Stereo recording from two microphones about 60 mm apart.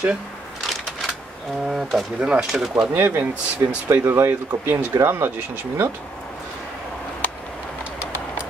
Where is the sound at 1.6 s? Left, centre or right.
Centre.